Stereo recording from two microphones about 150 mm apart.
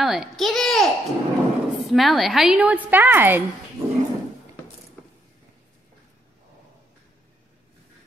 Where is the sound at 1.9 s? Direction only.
Centre (ahead or behind).